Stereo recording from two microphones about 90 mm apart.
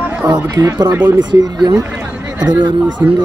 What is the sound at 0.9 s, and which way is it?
Speech, 20° right (ahead or behind).